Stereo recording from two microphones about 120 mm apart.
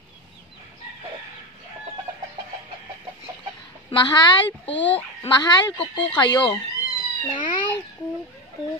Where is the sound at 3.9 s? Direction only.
40° left (ahead or behind).